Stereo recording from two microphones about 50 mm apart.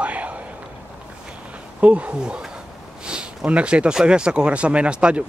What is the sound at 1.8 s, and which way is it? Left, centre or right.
Speech, right.